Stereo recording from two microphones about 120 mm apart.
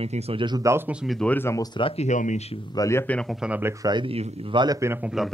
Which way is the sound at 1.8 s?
60° left (ahead or behind).